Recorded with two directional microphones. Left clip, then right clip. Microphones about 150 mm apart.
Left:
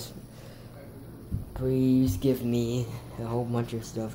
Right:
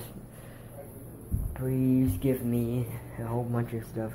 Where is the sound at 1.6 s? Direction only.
20° left (ahead or behind).